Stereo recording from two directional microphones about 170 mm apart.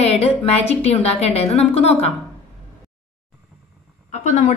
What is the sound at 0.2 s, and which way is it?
A woman's voice, 40° left (ahead or behind).